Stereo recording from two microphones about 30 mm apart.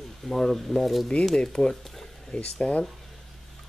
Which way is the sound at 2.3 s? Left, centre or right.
Left.